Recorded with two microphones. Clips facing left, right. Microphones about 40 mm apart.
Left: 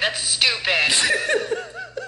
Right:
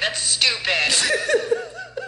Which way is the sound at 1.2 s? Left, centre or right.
Left.